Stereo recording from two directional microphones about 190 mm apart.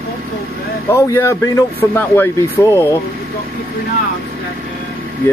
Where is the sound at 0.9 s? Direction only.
15° left (ahead or behind).